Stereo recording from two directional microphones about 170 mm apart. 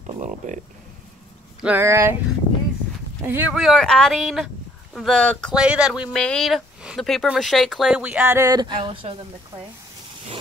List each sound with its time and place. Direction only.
0.0 s speech: 45° right (ahead or behind)
1.6 s speech: 10° right (ahead or behind)
3.2 s speech: 15° right (ahead or behind); by 9.1 s 30° right (ahead or behind)